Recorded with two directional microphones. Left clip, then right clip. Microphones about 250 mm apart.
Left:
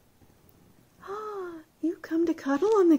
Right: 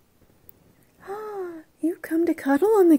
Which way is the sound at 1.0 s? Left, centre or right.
Right.